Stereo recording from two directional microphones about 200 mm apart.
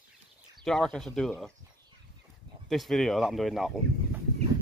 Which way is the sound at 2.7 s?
Centre (ahead or behind).